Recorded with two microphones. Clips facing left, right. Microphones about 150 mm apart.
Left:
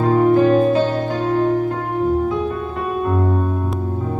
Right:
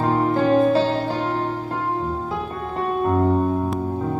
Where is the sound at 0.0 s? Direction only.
30° right (ahead or behind).